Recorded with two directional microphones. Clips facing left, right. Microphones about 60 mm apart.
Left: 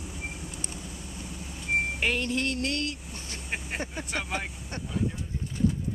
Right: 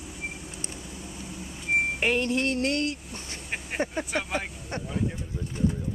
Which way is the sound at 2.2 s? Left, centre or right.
Right.